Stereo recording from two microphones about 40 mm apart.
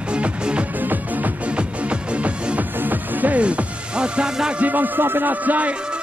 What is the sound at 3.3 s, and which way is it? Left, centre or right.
Music, right.